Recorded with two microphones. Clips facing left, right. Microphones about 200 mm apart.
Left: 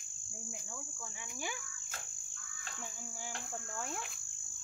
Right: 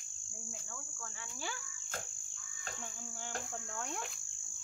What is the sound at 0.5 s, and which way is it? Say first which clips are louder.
Insect: left 2 dB; 15° left (ahead or behind).